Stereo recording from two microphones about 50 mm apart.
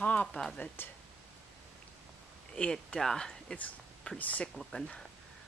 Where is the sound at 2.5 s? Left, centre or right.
Centre.